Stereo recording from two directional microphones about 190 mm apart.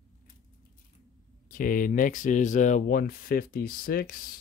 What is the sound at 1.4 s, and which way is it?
Speech, 45° left (ahead or behind).